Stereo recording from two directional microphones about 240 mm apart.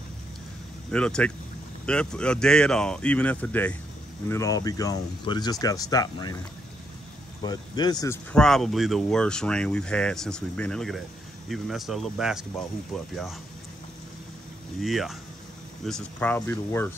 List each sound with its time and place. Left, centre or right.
0.9 s speech: centre
7.4 s speech: centre
14.8 s speech: centre